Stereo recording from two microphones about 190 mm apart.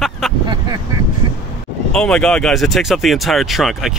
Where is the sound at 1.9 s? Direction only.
5° left (ahead or behind).